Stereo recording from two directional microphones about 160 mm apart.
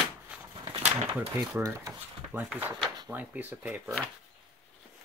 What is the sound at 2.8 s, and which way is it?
Drawer open or close, 25° right (ahead or behind).